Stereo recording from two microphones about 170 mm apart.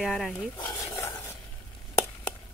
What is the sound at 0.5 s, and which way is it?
Stir, 25° left (ahead or behind).